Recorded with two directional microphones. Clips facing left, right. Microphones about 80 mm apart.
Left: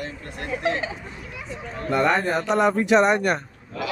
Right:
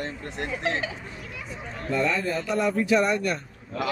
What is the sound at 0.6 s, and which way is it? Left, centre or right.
Speech, left.